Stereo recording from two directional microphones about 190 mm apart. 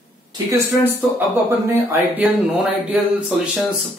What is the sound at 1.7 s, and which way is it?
Speech, 10° right (ahead or behind).